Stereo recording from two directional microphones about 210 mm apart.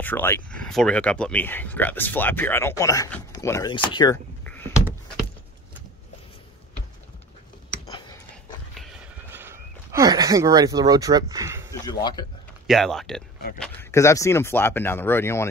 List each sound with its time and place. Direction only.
0.0 s speech: 10° left (ahead or behind)
7.8 s a sound: 20° left (ahead or behind)
9.3 s speech: 10° right (ahead or behind)
11.8 s speech: 20° left (ahead or behind)
12.6 s speech: centre (ahead or behind)